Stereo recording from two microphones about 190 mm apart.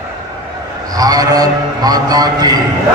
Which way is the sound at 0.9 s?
20° right (ahead or behind).